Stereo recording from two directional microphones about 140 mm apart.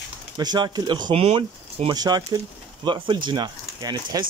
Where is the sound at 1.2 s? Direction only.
45° right (ahead or behind).